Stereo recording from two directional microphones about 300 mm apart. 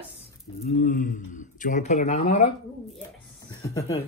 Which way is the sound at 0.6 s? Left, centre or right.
Left.